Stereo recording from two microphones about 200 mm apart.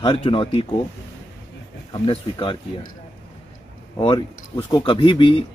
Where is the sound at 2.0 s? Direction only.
25° left (ahead or behind).